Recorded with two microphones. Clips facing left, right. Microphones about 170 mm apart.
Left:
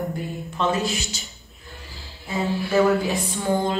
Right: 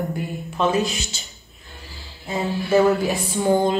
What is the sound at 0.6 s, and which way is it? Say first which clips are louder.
Speech: right 3 dB; 20° right (ahead or behind).